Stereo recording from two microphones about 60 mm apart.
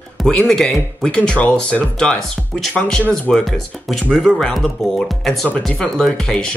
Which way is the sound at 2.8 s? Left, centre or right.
Centre.